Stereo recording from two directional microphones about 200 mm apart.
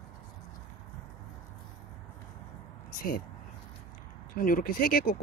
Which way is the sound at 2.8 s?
45° left (ahead or behind).